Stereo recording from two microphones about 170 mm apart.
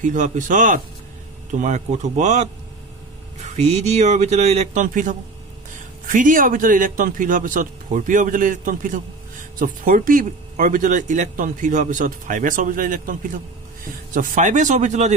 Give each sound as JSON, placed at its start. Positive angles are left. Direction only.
{"t": 0.0, "sound": "speech", "side_deg": -45}